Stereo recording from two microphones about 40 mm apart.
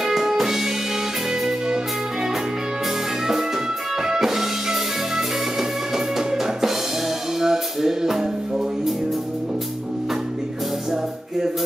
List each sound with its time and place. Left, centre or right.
0.0 s music: centre
4.0 s music: centre
10.9 s music: centre